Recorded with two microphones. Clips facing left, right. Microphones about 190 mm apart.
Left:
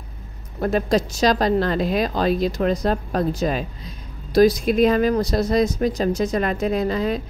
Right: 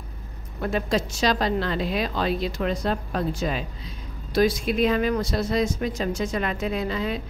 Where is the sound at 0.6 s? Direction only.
40° left (ahead or behind).